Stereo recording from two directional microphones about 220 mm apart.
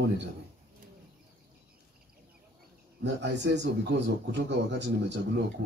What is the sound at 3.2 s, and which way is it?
Speech, 50° right (ahead or behind).